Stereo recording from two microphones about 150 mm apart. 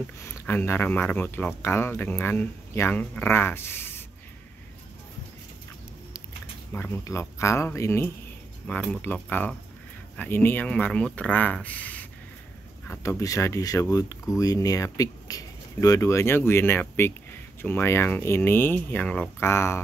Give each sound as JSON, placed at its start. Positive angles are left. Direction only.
{"t": 0.0, "sound": "speech", "side_deg": 15}
{"t": 6.7, "sound": "speech", "side_deg": 15}